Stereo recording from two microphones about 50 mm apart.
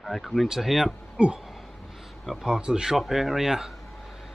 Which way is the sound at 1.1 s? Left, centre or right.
Centre.